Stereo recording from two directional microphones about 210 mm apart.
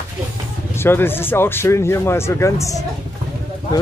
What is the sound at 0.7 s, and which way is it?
Speech, 10° left (ahead or behind).